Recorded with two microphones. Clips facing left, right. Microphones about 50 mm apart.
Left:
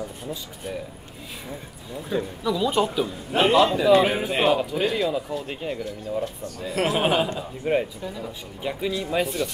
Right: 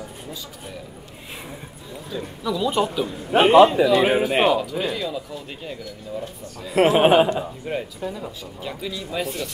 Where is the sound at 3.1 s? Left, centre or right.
Right.